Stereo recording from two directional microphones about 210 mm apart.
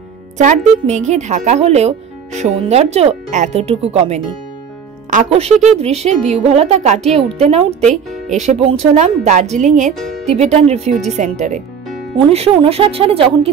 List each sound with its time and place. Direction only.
0.4 s speech: 35° right (ahead or behind)